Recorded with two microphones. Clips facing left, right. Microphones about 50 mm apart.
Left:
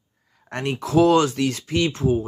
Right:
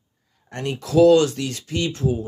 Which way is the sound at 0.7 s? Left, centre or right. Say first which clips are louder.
Right 3 dB; left.